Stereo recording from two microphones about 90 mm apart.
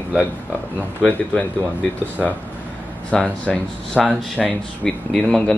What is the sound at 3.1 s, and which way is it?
Speech, 10° left (ahead or behind).